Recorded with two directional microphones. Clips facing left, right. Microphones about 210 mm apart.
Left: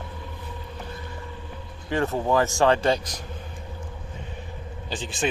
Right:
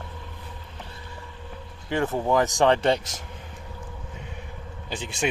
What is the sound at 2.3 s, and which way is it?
Speech, 15° right (ahead or behind).